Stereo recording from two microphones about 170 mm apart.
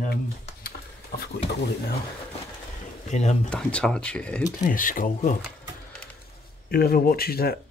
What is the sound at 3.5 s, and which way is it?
Speech, 5° left (ahead or behind).